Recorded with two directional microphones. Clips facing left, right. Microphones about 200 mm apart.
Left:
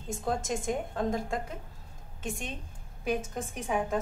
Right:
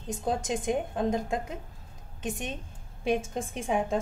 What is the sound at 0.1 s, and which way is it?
A woman's voice, 20° right (ahead or behind).